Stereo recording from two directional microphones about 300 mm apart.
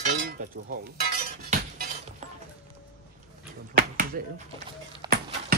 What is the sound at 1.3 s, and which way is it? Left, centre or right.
Shatter, right.